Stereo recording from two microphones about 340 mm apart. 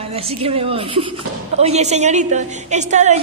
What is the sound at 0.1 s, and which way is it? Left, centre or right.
A woman's voice, centre.